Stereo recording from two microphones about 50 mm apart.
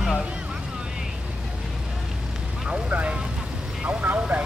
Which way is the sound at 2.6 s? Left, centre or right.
Right.